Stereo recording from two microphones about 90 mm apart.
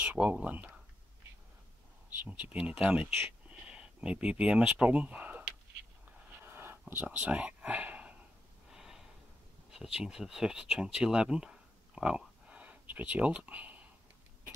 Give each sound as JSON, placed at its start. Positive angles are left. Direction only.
{"t": 0.0, "sound": "speech", "side_deg": -15}
{"t": 2.0, "sound": "speech", "side_deg": -15}
{"t": 6.4, "sound": "a sound", "side_deg": -25}
{"t": 6.9, "sound": "speech", "side_deg": -15}
{"t": 8.7, "sound": "snort", "side_deg": -5}
{"t": 9.7, "sound": "speech", "side_deg": -5}